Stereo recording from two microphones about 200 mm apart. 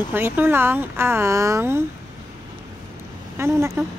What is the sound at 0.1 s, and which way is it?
A woman's voice, 10° right (ahead or behind).